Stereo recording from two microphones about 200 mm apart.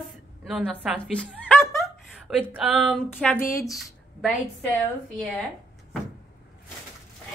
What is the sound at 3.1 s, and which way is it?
A woman's voice, 10° left (ahead or behind).